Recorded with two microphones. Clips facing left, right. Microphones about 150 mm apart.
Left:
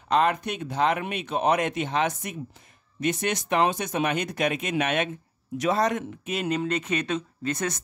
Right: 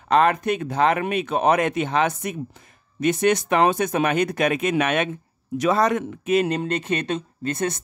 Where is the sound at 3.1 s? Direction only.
60° right (ahead or behind).